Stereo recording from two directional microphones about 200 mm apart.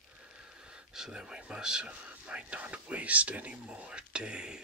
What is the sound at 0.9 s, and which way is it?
Speech, 5° right (ahead or behind).